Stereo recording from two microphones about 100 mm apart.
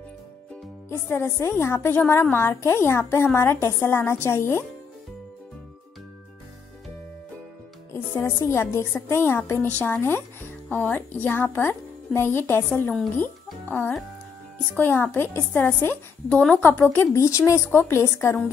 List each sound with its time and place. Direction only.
0.8 s speech: 25° left (ahead or behind)
7.9 s speech: 25° left (ahead or behind)